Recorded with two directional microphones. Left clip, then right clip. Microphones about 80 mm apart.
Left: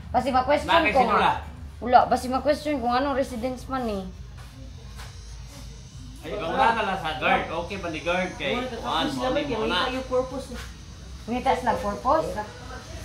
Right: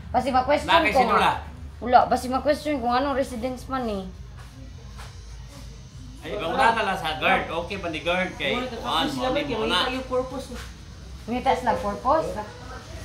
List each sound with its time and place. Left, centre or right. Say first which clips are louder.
0.1 s a woman's voice: even; centre
0.7 s a woman's voice: right 1 dB; right
1.8 s a woman's voice: even; centre
6.2 s a woman's voice: right 1 dB; right
11.2 s a woman's voice: right 1 dB; centre